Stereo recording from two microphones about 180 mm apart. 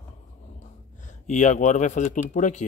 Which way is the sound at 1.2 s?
40° left (ahead or behind).